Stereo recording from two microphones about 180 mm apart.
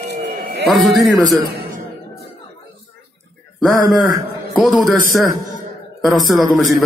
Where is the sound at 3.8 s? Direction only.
20° right (ahead or behind).